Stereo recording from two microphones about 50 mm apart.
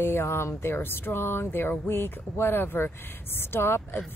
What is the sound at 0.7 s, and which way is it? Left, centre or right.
Speech, left.